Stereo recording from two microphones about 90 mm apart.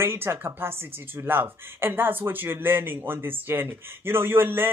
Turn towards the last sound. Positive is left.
turn(degrees=-25)  # may be behind; listen again after turning